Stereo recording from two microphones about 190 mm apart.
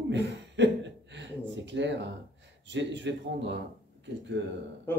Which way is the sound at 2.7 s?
70° right (ahead or behind).